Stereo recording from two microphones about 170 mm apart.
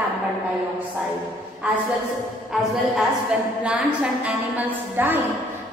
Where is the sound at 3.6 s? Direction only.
5° right (ahead or behind).